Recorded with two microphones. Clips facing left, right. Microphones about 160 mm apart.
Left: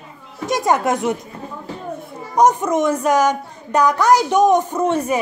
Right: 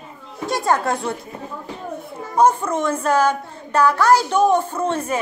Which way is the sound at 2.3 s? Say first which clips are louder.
Left 2 dB; 15° left (ahead or behind).